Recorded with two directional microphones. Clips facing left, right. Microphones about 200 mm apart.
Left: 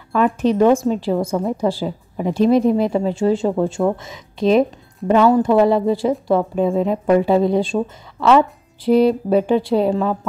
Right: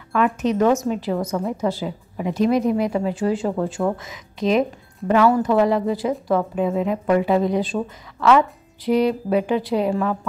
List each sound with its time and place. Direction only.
0.1 s speech: 35° left (ahead or behind)